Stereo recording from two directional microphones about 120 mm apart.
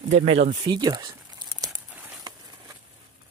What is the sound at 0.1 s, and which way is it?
Speech, 70° right (ahead or behind).